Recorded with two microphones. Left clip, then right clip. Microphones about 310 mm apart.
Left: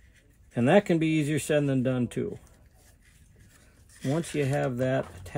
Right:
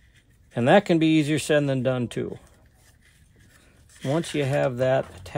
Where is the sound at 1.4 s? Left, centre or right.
Centre.